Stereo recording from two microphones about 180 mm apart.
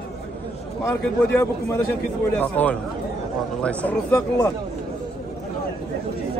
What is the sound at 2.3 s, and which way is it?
A man's voice, 10° left (ahead or behind).